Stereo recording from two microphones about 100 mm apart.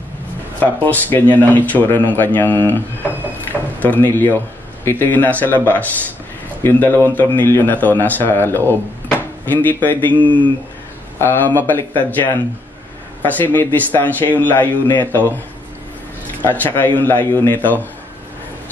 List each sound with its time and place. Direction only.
0.8 s speech: 20° left (ahead or behind)
10.2 s speech: 55° right (ahead or behind)
11.1 s speech: 20° left (ahead or behind)
16.4 s speech: 20° left (ahead or behind)